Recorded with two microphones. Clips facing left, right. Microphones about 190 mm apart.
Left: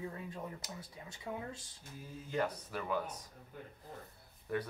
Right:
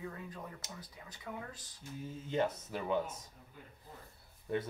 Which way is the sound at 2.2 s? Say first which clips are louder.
Right 2 dB; 20° right (ahead or behind).